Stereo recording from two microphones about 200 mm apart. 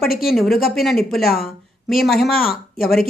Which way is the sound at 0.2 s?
Centre (ahead or behind).